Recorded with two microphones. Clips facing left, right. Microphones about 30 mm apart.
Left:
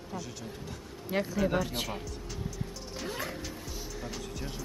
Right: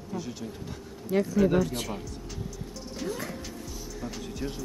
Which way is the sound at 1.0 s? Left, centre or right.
Left.